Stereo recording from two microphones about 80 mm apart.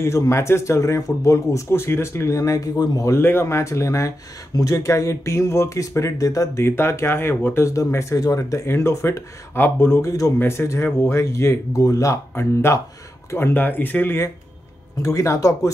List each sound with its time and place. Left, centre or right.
0.0 s speech: left
3.0 s speech: left